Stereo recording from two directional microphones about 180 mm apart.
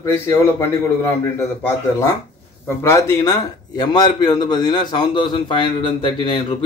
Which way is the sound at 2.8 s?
15° left (ahead or behind).